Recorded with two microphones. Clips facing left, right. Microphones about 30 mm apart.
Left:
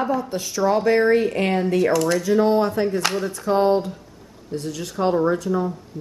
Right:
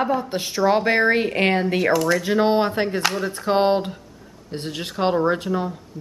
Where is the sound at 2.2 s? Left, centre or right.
Right.